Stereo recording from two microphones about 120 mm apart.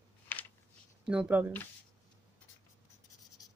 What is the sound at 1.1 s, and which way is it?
Speech, 10° right (ahead or behind).